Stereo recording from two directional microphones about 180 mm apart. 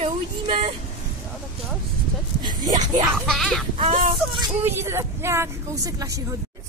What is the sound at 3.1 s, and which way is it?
Speech, centre (ahead or behind).